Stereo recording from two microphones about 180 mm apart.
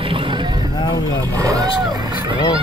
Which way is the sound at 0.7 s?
25° left (ahead or behind).